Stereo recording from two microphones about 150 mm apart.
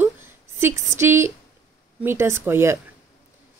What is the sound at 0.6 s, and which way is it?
Speech, 15° right (ahead or behind).